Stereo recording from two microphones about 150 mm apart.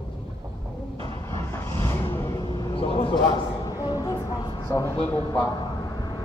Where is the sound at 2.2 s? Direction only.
30° left (ahead or behind).